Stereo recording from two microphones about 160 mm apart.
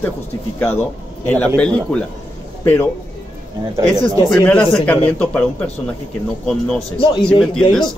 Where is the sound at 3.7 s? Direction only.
20° right (ahead or behind).